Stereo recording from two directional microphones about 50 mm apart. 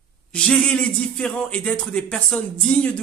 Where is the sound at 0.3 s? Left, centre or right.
Centre.